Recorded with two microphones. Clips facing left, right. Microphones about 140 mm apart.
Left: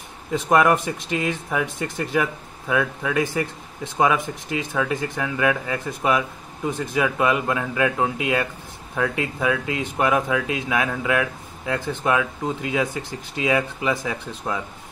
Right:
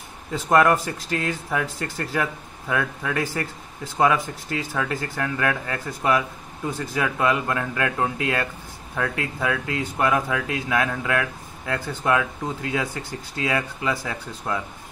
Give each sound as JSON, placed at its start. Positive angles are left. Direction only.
{"t": 0.3, "sound": "speech", "side_deg": 5}